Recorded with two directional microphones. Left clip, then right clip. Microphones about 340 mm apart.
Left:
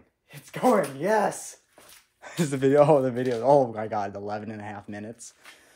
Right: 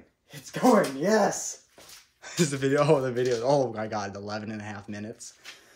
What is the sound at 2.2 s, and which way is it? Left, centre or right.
A man's voice, centre.